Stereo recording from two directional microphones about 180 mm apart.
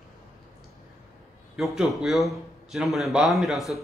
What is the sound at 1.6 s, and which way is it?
A man's voice, centre (ahead or behind).